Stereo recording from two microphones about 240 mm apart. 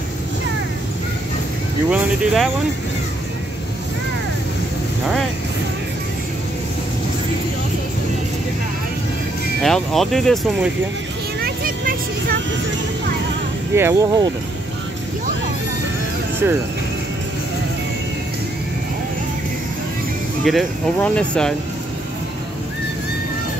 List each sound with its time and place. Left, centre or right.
1.9 s speech: centre
9.6 s speech: centre
11.4 s vehicle: right
13.7 s speech: centre
20.4 s speech: centre